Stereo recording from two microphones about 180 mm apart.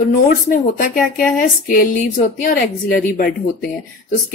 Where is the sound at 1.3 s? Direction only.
45° left (ahead or behind).